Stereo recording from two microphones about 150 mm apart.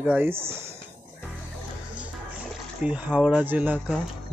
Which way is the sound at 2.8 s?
10° right (ahead or behind).